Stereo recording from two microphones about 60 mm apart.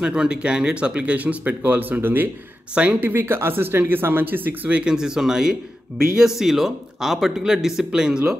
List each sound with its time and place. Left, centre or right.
0.0 s speech: centre; by 2.2 s right
2.7 s speech: right
3.1 s speech: right
4.9 s speech: centre